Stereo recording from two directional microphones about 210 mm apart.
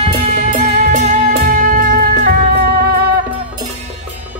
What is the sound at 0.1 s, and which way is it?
Music, 40° right (ahead or behind).